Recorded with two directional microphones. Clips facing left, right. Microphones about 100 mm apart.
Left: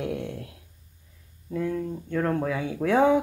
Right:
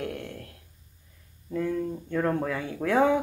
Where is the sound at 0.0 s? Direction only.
15° left (ahead or behind).